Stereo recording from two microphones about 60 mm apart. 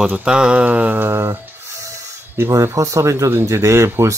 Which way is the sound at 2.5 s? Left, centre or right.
Right.